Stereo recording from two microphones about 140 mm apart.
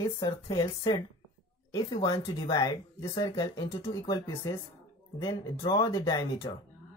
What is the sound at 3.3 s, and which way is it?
Speech, 40° left (ahead or behind).